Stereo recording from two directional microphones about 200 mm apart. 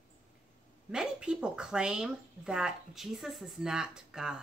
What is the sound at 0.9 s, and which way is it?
A woman's voice, 5° right (ahead or behind).